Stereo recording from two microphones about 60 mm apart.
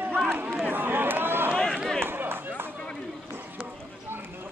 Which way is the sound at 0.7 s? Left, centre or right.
Right.